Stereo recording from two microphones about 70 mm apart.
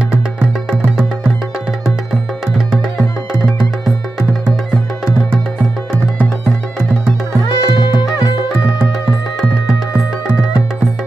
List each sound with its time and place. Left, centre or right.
7.4 s music: left